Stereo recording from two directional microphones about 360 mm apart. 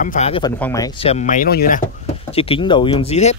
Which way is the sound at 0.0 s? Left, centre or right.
Centre.